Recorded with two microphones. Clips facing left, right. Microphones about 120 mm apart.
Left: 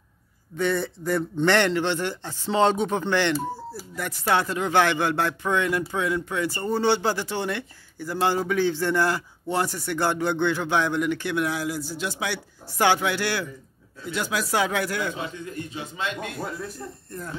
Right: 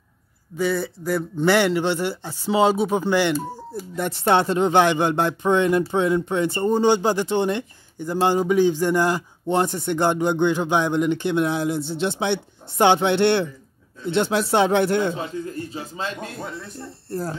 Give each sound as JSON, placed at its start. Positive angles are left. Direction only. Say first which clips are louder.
{"t": 0.6, "sound": "a man's voice", "louder": "right 2 dB", "side_deg": -5}
{"t": 3.3, "sound": "speech", "louder": "right 1 dB", "side_deg": 5}
{"t": 3.9, "sound": "speech", "louder": "right 5 dB", "side_deg": -25}
{"t": 16.3, "sound": "speech", "louder": "left 1 dB", "side_deg": 0}
{"t": 16.7, "sound": "speech", "louder": "right 6 dB", "side_deg": -30}